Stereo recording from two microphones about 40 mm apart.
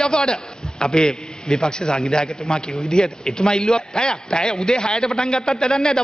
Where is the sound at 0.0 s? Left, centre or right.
Centre.